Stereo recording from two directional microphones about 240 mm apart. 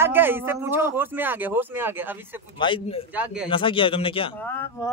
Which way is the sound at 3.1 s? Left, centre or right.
Centre.